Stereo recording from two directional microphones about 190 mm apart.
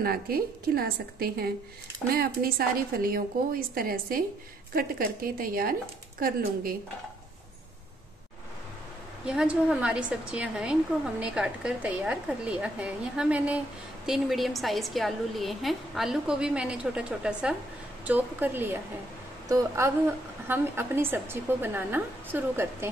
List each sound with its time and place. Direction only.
0.0 s a woman's voice: 50° right (ahead or behind)
9.2 s a woman's voice: 5° right (ahead or behind)